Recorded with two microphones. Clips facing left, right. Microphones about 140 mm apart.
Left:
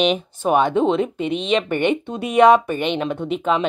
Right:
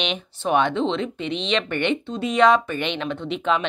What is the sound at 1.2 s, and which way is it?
Speech, 50° left (ahead or behind).